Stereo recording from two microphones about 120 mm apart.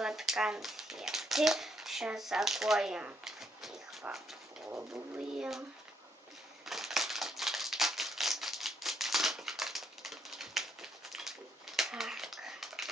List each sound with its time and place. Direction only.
0.0 s a child's voice: 5° right (ahead or behind)
4.1 s dog: centre (ahead or behind)
4.6 s speech: 20° right (ahead or behind)
6.6 s scissors: centre (ahead or behind)